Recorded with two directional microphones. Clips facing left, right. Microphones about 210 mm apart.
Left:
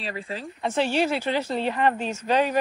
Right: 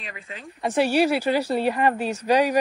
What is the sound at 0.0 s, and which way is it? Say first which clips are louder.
Speech: left 7 dB; 35° left (ahead or behind).